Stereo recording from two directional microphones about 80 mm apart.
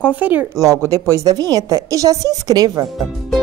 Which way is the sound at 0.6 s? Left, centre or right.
Right.